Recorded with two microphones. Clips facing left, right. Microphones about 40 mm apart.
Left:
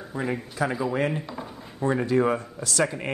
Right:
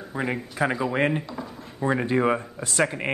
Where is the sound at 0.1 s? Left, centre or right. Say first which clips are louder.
Right 1 dB; right.